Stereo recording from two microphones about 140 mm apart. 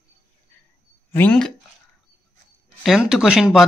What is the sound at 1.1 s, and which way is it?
Speech, 10° left (ahead or behind).